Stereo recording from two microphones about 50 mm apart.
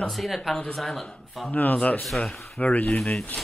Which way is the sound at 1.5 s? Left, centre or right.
Left.